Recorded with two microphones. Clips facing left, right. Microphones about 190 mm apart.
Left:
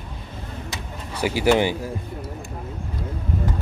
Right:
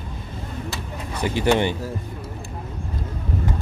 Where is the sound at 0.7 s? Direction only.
10° left (ahead or behind).